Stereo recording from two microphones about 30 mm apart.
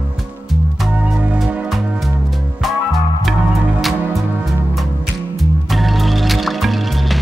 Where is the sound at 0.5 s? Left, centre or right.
Centre.